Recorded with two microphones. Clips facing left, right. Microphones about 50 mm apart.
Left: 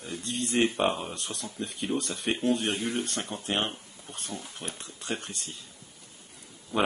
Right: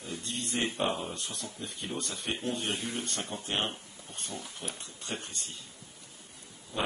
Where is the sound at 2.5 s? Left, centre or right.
Left.